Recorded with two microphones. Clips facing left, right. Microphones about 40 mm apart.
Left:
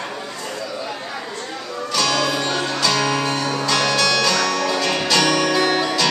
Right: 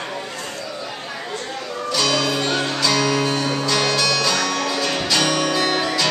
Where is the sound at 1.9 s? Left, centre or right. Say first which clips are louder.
Left 1 dB; centre.